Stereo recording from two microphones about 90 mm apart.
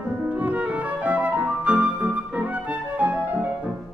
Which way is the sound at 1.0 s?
15° right (ahead or behind).